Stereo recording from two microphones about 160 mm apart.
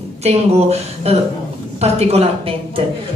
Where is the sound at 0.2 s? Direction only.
40° right (ahead or behind).